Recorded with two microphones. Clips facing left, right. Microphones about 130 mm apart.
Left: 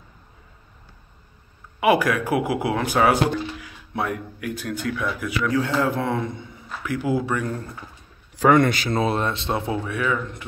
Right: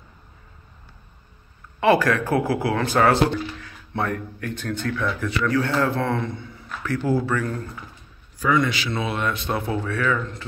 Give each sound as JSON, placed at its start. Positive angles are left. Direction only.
{"t": 1.8, "sound": "speech", "side_deg": 15}
{"t": 8.4, "sound": "speech", "side_deg": 60}